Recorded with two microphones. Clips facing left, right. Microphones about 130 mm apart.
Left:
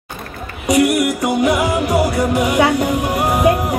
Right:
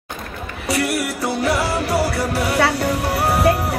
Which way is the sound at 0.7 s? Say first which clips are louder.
Left 7 dB; 15° left (ahead or behind).